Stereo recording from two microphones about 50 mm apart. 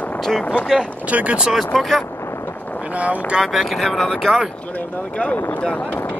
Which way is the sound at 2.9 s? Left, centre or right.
Right.